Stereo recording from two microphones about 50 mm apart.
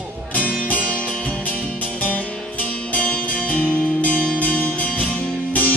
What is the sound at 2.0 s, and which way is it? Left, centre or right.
Music, left.